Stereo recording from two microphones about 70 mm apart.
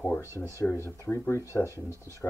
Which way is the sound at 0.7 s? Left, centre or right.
Left.